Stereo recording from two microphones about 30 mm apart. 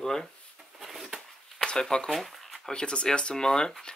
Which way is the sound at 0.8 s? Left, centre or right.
Centre.